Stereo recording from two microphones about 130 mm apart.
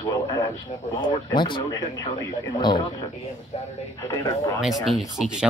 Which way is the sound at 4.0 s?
25° left (ahead or behind).